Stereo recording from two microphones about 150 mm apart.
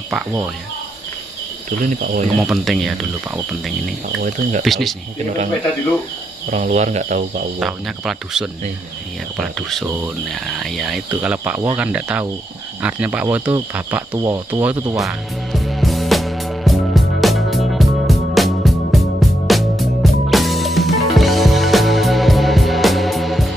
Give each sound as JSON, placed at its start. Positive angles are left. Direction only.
{"t": 1.9, "sound": "speech", "side_deg": -65}
{"t": 2.3, "sound": "speech", "side_deg": 0}
{"t": 4.2, "sound": "speech", "side_deg": -55}
{"t": 4.6, "sound": "speech", "side_deg": 0}
{"t": 6.5, "sound": "speech", "side_deg": -50}
{"t": 7.6, "sound": "speech", "side_deg": 0}
{"t": 14.1, "sound": "speech", "side_deg": -25}
{"t": 14.5, "sound": "speech", "side_deg": -10}
{"t": 15.0, "sound": "music", "side_deg": 0}